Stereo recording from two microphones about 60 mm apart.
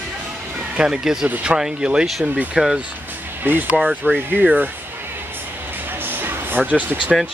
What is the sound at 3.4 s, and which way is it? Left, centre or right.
Speech, right.